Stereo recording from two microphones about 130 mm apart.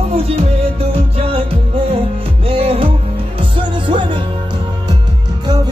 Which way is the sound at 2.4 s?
45° right (ahead or behind).